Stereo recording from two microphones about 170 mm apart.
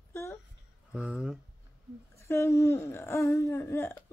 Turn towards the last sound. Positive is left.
turn(degrees=15)  # may be behind; listen again after turning